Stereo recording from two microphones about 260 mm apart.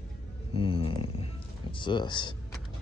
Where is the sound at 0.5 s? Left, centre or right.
Centre.